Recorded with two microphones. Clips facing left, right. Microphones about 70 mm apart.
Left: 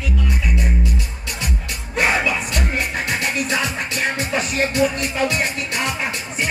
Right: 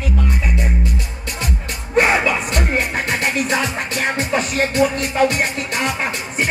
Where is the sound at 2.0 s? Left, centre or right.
Right.